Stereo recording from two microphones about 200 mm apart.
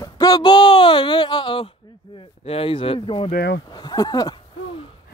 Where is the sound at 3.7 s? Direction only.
20° left (ahead or behind).